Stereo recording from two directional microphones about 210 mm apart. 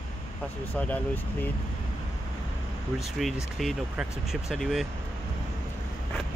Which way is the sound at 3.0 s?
Centre (ahead or behind).